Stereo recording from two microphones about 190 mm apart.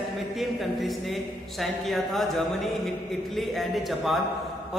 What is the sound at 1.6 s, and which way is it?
A woman's voice, centre (ahead or behind).